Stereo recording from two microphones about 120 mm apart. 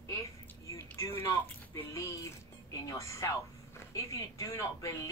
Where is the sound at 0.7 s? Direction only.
25° left (ahead or behind).